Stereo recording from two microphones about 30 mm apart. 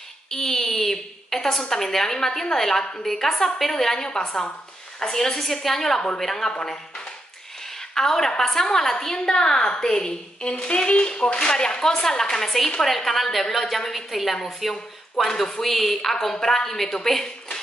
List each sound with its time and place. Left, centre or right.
0.3 s a sound: centre
2.5 s a woman's voice: centre
7.9 s a woman's voice: centre
15.2 s a woman's voice: centre